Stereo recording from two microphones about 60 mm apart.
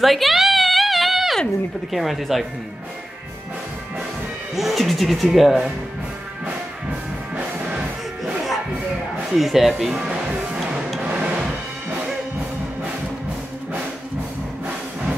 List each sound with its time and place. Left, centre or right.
0.0 s a sound: centre
1.9 s speech: centre
4.6 s speech: centre
9.3 s speech: centre
11.0 s music: centre